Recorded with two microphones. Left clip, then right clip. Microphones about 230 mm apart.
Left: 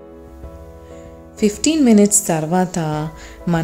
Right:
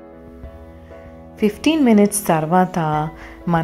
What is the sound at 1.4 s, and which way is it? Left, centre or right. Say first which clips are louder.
A woman's voice: left 1 dB; centre.